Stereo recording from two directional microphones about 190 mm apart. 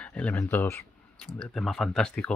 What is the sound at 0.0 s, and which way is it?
Speech, 5° left (ahead or behind).